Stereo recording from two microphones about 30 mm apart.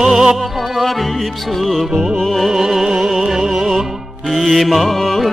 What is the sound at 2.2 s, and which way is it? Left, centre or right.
Music, centre.